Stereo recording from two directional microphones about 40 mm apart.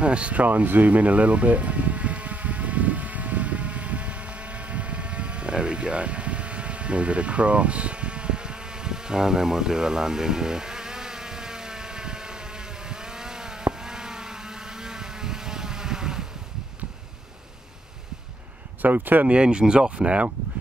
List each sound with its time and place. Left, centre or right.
0.0 s speech: right
0.5 s a sound: right; by 16.3 s centre
18.8 s speech: right
19.2 s speech: right